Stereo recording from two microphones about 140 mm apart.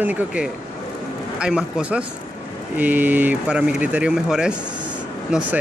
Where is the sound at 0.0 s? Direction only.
10° right (ahead or behind).